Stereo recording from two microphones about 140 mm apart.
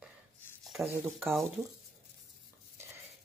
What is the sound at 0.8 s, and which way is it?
Speech, 15° right (ahead or behind).